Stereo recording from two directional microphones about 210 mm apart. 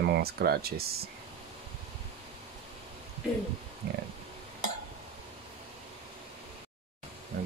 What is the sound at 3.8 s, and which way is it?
Speech, 50° right (ahead or behind).